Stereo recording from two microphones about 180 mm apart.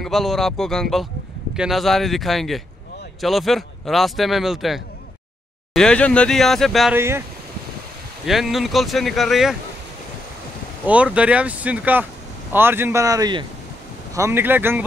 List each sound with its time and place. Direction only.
0.0 s speech: centre (ahead or behind)
7.0 s speech: 15° right (ahead or behind)
8.3 s speech: centre (ahead or behind)
10.9 s speech: 5° right (ahead or behind)